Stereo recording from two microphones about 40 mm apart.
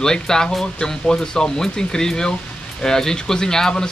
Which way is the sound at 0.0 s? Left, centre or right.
Centre.